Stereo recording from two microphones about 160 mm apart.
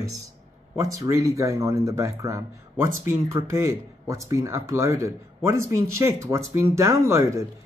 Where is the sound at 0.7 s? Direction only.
20° right (ahead or behind).